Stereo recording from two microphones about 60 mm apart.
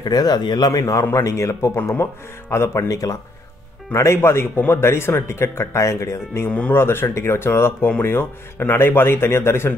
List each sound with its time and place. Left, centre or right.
0.1 s a man's voice: left
1.1 s a man's voice: left